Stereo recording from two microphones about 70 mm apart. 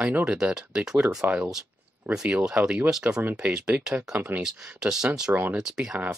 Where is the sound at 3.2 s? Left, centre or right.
Right.